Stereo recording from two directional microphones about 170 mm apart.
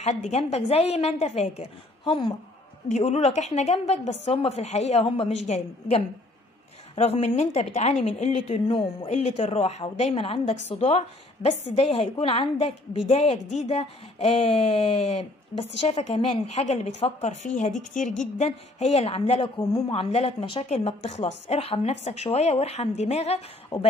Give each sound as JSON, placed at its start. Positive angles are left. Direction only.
{"t": 0.0, "sound": "speech", "side_deg": 40}
{"t": 2.9, "sound": "a woman's voice", "side_deg": 40}
{"t": 11.7, "sound": "speech", "side_deg": 35}